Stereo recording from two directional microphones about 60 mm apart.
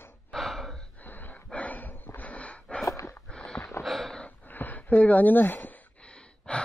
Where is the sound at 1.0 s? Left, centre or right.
Left.